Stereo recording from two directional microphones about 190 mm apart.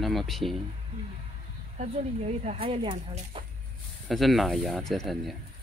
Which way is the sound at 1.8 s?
35° right (ahead or behind).